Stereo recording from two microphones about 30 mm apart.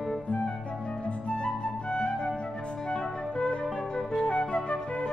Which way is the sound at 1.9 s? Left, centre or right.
Left.